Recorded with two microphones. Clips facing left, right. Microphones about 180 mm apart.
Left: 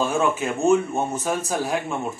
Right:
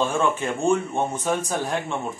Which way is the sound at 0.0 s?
10° left (ahead or behind).